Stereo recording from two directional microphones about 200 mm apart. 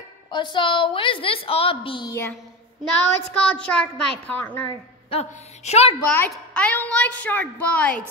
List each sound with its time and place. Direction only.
0.3 s a woman's voice: 20° left (ahead or behind)
3.3 s a woman's voice: 5° left (ahead or behind)
5.1 s a woman's voice: 30° left (ahead or behind)
6.0 s a woman's voice: 5° left (ahead or behind)